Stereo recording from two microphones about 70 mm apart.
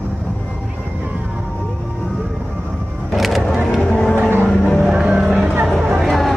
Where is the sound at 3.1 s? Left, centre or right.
Centre.